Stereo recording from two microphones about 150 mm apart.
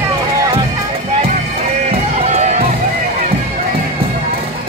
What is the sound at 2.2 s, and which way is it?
Music, 50° right (ahead or behind).